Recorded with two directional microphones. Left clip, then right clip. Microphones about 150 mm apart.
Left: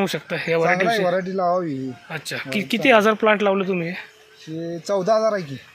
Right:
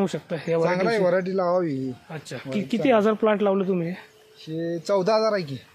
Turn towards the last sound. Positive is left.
turn(degrees=-30)  # may be behind; listen again after turning